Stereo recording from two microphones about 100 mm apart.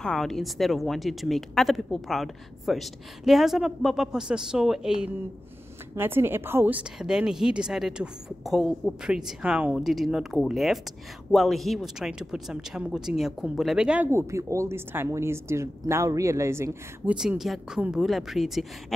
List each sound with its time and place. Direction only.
0.0 s speech: 5° left (ahead or behind)
5.9 s a woman's voice: 20° right (ahead or behind)
7.0 s a woman's voice: 5° right (ahead or behind)
14.0 s a woman's voice: 30° right (ahead or behind)
17.0 s speech: 10° right (ahead or behind)